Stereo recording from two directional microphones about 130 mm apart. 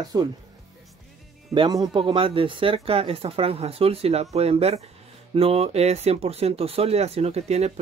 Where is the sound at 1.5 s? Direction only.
35° right (ahead or behind).